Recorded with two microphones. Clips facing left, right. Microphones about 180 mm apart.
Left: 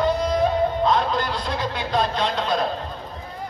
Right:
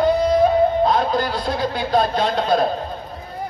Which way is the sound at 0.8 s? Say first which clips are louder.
Right 3 dB; 45° right (ahead or behind).